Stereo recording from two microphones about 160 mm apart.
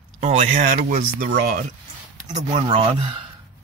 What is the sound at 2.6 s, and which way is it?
Speech, 35° right (ahead or behind).